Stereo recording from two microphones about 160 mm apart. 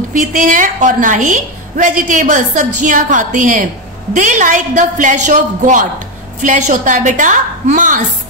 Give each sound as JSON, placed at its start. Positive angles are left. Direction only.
{"t": 0.1, "sound": "a woman's voice", "side_deg": -55}